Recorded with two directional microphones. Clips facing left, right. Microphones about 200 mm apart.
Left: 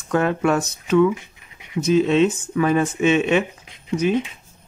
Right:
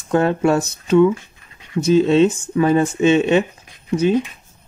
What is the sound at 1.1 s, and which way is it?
Scratch, 15° left (ahead or behind).